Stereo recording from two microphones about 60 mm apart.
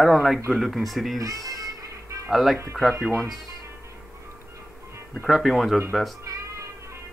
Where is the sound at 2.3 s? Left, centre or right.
Centre.